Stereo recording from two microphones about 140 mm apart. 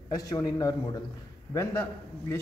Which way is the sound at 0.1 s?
25° left (ahead or behind).